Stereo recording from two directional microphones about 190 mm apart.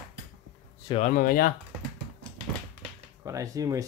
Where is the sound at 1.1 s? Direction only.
50° left (ahead or behind).